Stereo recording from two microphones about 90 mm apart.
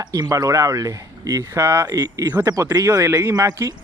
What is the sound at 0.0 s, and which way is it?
Speech, 45° right (ahead or behind).